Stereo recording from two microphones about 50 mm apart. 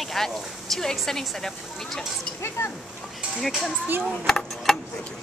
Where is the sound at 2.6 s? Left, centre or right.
Left.